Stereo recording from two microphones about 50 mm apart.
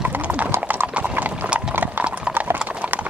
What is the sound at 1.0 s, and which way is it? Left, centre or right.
Clip-clop, right.